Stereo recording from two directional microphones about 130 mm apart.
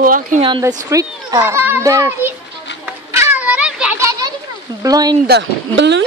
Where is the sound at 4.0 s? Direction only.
25° right (ahead or behind).